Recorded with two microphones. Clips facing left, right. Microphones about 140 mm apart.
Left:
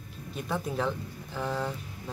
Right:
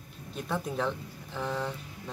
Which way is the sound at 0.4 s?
Centre (ahead or behind).